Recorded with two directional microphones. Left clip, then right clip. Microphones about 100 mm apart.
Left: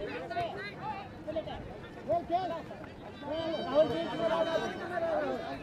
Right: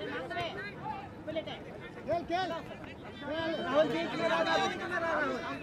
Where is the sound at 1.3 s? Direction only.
35° right (ahead or behind).